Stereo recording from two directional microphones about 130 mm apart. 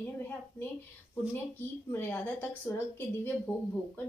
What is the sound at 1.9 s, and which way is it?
Speech, 20° left (ahead or behind).